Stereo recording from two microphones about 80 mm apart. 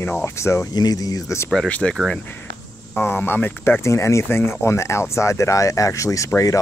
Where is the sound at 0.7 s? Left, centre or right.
Left.